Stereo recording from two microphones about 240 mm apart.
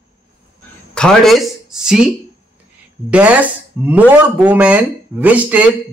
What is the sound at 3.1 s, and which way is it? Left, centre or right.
Speech, centre.